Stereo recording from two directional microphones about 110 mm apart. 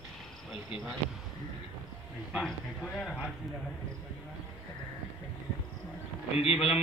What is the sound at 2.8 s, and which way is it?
Speech, 10° left (ahead or behind).